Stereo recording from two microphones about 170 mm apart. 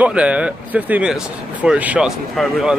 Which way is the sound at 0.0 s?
5° right (ahead or behind).